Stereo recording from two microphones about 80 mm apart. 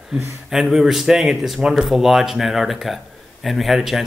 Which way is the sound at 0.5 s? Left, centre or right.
Centre.